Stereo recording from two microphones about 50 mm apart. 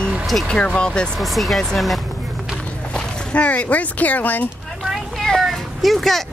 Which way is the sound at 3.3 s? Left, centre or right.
Left.